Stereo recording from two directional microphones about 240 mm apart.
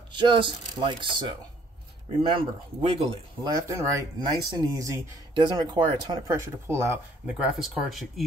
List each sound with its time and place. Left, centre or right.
0.1 s speech: centre
2.2 s speech: right; by 8.1 s centre